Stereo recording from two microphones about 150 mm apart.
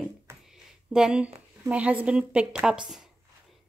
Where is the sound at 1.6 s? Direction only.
10° right (ahead or behind).